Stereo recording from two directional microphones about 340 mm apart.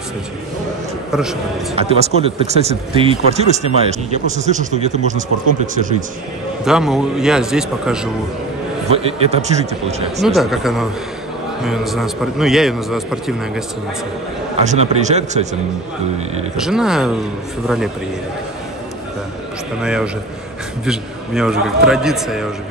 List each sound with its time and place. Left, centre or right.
1.8 s speech: centre
6.6 s a man's voice: centre
8.8 s speech: centre
10.2 s a man's voice: centre
14.6 s speech: right
16.5 s a man's voice: centre
19.8 s a man's voice: centre